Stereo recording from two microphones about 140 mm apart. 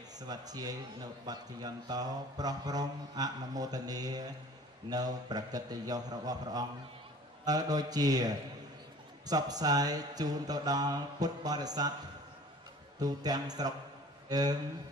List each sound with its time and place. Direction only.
0.2 s speech: 30° right (ahead or behind)
13.0 s speech: 30° right (ahead or behind)